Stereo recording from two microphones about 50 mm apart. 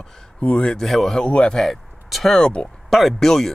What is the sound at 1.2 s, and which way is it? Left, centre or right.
Speech, left.